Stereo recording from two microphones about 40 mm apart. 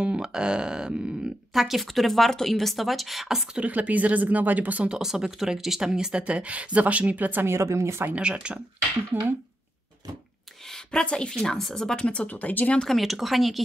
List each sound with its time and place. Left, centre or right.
0.0 s a sound: right
1.5 s speech: centre
3.5 s speech: right
5.0 s speech: centre
6.2 s speech: right
7.4 s speech: right
8.2 s a sound: right
10.7 s a sound: centre
11.1 s speech: left
11.3 s a woman's voice: centre
12.0 s speech: left
12.3 s speech: left
12.8 s speech: centre